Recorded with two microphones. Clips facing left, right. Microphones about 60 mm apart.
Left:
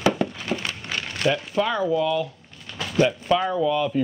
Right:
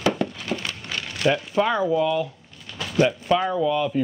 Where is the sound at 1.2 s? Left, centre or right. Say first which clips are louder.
Right 2 dB; right.